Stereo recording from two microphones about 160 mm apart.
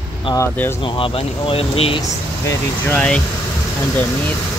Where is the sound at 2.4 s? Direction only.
20° left (ahead or behind).